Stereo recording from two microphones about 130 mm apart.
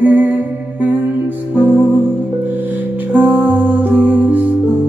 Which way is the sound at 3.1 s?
15° right (ahead or behind).